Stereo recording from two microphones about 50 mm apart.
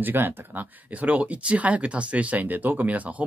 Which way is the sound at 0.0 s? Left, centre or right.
Right.